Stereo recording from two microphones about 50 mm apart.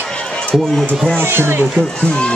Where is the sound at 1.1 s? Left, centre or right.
Right.